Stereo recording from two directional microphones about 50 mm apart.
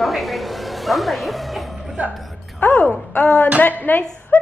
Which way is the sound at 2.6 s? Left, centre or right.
Left.